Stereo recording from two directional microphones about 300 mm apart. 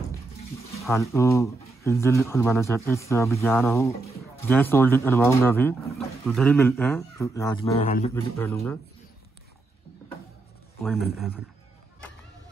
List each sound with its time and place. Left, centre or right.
0.8 s speech: centre
7.7 s a man's voice: left
8.1 s speech: centre
11.1 s speech: centre